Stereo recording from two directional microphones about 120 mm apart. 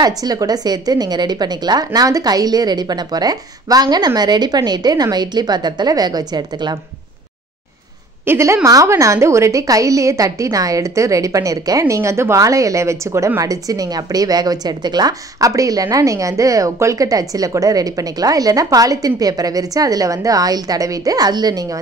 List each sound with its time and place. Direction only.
0.0 s speech: 30° right (ahead or behind)
8.3 s a woman's voice: 25° right (ahead or behind)